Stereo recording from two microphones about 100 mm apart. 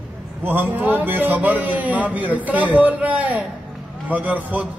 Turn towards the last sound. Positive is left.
turn(degrees=-15)  # may be behind; listen again after turning